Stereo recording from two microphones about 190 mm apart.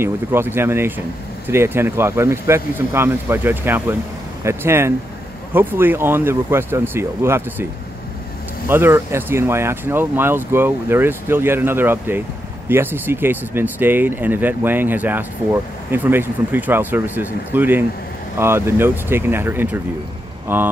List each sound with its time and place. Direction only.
0.0 s speech: 10° right (ahead or behind)
8.6 s speech: 10° right (ahead or behind)